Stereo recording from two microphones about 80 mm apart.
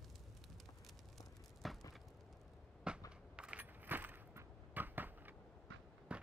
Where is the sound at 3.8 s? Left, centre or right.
Right.